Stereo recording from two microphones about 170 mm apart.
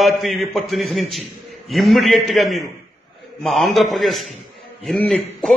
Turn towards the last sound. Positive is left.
turn(degrees=0)  # may be behind; listen again after turning